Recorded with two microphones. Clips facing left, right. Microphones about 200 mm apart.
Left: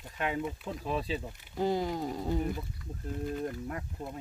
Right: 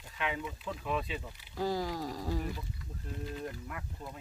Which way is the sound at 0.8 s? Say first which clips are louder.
Left 3 dB; 35° left (ahead or behind).